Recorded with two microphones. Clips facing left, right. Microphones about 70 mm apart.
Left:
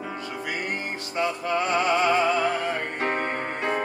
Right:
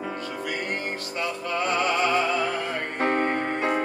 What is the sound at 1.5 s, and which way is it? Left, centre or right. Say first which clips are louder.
Music: left 1 dB; left.